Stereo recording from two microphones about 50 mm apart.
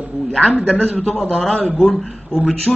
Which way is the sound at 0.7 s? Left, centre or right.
Centre.